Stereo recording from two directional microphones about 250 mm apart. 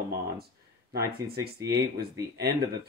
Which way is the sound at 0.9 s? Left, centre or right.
Right.